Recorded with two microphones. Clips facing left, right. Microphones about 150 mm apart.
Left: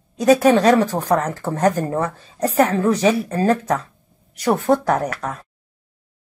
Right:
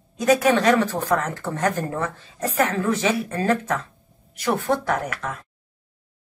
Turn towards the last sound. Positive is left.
turn(degrees=40)  # may be behind; listen again after turning